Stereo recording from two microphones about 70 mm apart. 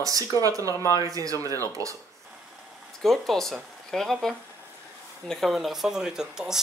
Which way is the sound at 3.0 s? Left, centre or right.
Centre.